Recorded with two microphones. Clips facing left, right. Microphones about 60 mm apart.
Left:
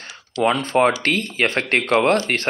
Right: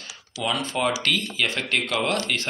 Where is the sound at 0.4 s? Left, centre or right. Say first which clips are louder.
Left 8 dB; left.